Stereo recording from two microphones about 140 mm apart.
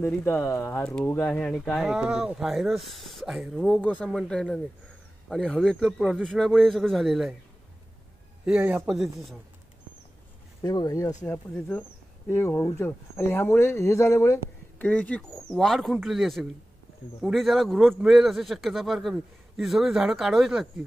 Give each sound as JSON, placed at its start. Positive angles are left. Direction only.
{"t": 0.0, "sound": "speech", "side_deg": 15}
{"t": 8.5, "sound": "speech", "side_deg": -5}
{"t": 10.6, "sound": "speech", "side_deg": 25}
{"t": 12.3, "sound": "speech", "side_deg": 15}
{"t": 14.8, "sound": "speech", "side_deg": 10}